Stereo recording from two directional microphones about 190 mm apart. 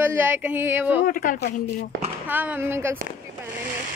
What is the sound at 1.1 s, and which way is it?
Speech, 45° left (ahead or behind).